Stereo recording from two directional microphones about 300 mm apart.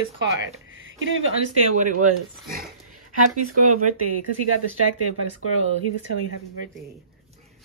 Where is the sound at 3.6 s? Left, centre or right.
Right.